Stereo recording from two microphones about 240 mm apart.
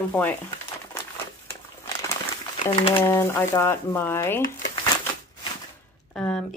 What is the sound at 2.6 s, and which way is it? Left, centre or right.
Speech, left.